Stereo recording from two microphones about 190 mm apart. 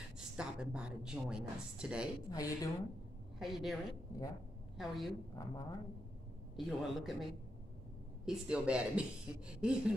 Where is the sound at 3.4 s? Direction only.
Centre (ahead or behind).